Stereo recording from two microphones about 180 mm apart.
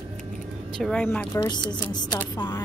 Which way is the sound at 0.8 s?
5° left (ahead or behind).